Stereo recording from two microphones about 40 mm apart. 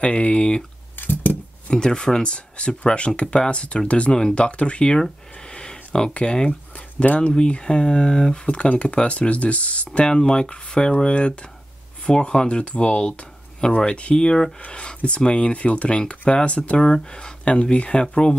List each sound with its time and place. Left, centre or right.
0.0 s speech: left
0.9 s a sound: left
1.7 s speech: centre
4.9 s speech: centre
10.0 s speech: centre